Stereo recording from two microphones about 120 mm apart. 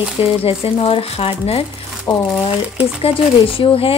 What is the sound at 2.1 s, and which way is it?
Speech, 20° left (ahead or behind).